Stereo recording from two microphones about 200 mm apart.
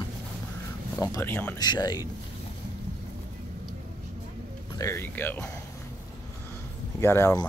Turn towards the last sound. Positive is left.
turn(degrees=15)  # may be behind; listen again after turning